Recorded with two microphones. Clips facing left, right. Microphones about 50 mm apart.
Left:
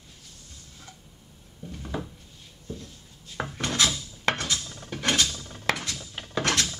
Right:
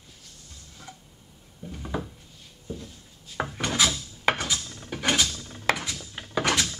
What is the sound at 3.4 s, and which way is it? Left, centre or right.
Wood, centre.